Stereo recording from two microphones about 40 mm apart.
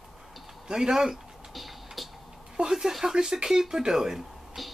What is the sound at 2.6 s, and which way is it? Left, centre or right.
Speech, centre.